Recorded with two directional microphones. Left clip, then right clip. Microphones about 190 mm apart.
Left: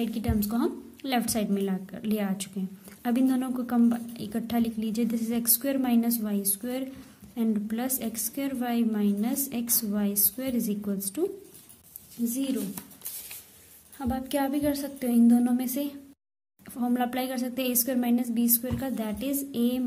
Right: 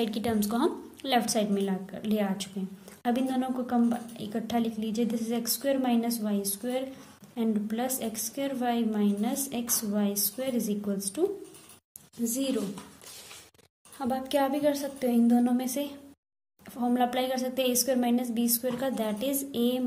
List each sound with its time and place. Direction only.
0.0 s a woman's voice: 20° left (ahead or behind)
12.4 s speech: 15° left (ahead or behind)
13.9 s a woman's voice: 25° left (ahead or behind)